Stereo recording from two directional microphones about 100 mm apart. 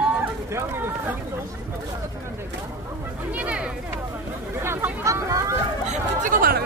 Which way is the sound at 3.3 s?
15° right (ahead or behind).